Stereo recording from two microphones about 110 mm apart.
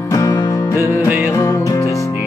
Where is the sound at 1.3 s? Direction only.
30° left (ahead or behind).